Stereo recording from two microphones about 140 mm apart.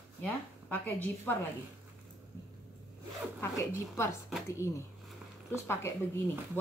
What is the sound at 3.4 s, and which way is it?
Speech, 20° left (ahead or behind).